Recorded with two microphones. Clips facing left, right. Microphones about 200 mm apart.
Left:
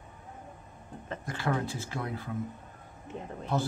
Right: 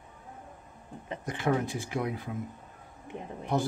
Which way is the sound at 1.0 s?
15° right (ahead or behind).